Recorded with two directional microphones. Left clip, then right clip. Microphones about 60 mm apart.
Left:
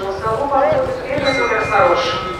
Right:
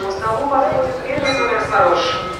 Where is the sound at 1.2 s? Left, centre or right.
Right.